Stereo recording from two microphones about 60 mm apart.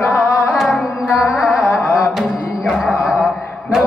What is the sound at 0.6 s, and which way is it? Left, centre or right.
Carnatic music, centre.